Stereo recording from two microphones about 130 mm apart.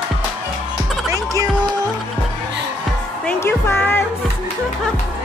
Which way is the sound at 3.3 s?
20° left (ahead or behind).